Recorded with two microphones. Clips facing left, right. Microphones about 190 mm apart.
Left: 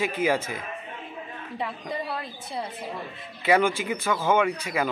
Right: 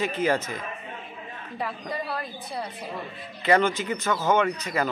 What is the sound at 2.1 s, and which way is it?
Speech, 25° left (ahead or behind).